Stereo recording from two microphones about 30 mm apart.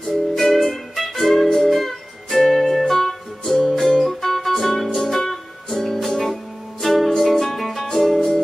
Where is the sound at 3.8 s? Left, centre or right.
Centre.